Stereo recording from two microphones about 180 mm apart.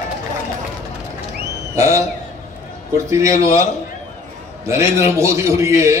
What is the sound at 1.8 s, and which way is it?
Speech, 15° right (ahead or behind).